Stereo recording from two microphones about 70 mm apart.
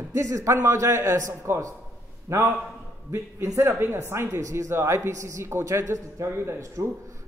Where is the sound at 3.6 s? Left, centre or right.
Right.